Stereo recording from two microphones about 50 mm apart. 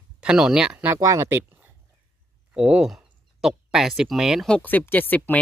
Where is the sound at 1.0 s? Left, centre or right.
Right.